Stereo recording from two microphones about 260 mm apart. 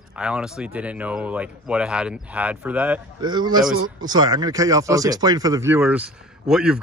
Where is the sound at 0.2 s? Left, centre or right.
Centre.